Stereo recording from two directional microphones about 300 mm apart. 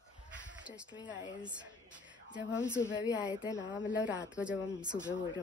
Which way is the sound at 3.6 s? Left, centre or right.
Left.